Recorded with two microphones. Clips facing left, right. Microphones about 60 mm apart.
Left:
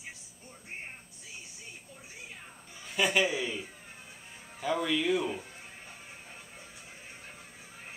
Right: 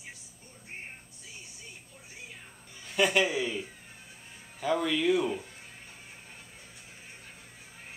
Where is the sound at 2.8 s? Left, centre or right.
Centre.